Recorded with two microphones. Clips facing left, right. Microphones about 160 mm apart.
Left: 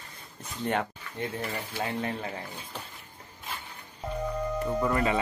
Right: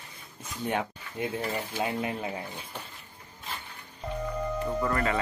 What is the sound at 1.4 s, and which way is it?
Speech, 15° right (ahead or behind).